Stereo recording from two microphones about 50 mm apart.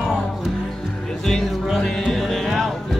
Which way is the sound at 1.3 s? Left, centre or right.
Centre.